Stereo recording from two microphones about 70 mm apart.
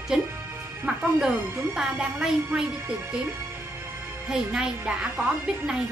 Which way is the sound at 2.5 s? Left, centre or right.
Centre.